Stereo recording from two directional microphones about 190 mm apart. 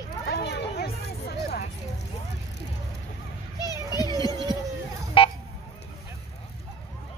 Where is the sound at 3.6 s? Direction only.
20° left (ahead or behind).